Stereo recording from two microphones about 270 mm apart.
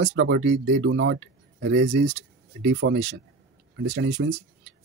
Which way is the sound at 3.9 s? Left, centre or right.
Right.